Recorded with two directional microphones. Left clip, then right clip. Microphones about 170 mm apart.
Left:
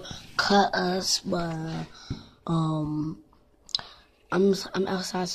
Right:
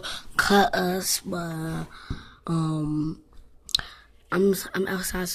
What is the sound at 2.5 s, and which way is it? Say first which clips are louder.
Speech: even; 15° right (ahead or behind).